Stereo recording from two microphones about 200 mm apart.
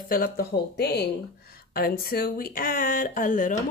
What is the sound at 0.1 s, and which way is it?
A woman's voice, 45° left (ahead or behind).